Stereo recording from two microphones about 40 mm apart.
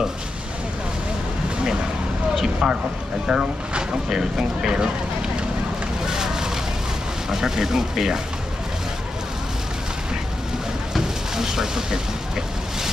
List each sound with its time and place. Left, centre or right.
2.3 s speech: centre
6.0 s vehicle: centre
7.2 s speech: centre
11.0 s a sound: centre